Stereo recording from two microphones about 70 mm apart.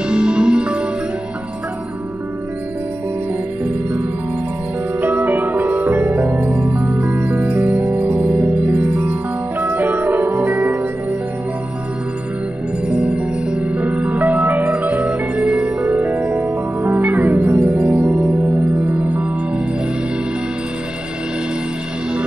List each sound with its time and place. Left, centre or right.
0.1 s music: centre
5.0 s music: right
12.8 s music: centre